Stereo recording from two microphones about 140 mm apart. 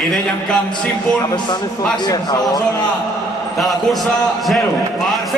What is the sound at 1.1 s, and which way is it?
A man's voice, 30° left (ahead or behind).